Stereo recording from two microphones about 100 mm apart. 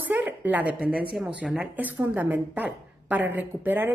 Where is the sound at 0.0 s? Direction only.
15° right (ahead or behind).